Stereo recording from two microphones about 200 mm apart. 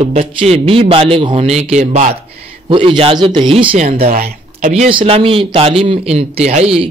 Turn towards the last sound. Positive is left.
turn(degrees=-30)  # may be behind; listen again after turning